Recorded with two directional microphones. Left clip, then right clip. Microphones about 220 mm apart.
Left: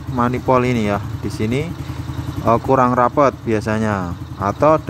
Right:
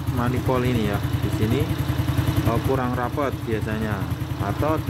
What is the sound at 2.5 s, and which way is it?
Speech, 25° left (ahead or behind).